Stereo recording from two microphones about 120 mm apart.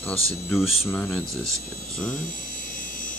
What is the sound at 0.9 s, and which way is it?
Speech, 15° left (ahead or behind).